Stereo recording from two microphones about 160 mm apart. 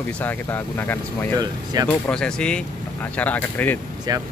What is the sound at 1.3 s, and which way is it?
Speech, 25° right (ahead or behind).